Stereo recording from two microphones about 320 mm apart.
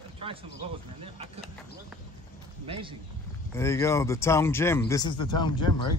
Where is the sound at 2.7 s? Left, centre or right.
Centre.